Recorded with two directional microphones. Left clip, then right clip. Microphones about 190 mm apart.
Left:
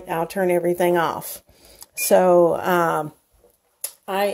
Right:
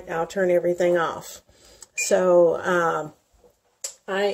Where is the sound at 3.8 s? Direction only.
60° left (ahead or behind).